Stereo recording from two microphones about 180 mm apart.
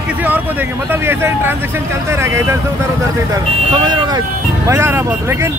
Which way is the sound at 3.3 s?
25° right (ahead or behind).